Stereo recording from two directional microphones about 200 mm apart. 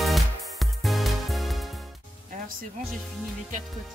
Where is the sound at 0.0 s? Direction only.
Centre (ahead or behind).